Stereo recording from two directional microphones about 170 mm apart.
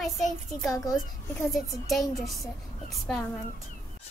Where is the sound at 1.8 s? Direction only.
Centre (ahead or behind).